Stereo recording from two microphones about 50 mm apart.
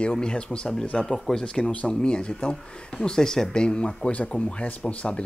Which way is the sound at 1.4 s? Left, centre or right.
Centre.